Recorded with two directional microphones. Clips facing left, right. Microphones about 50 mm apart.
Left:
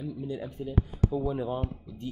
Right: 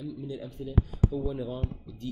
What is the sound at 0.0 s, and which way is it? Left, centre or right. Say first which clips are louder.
Speech: left 2 dB; left.